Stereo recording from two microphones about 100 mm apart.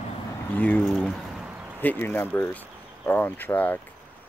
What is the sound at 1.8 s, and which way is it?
Speech, 20° left (ahead or behind).